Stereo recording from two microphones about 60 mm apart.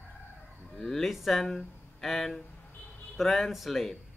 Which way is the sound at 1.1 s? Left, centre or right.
Centre.